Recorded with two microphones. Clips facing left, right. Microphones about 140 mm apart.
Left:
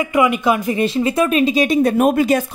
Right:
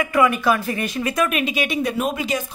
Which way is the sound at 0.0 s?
20° left (ahead or behind).